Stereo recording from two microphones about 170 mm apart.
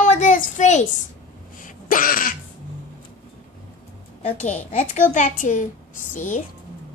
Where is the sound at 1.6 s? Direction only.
55° left (ahead or behind).